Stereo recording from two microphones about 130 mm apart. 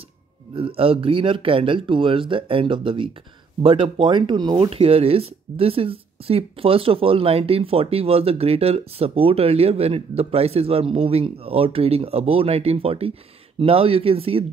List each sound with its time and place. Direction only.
0.6 s speech: 45° right (ahead or behind)
4.6 s speech: 50° right (ahead or behind)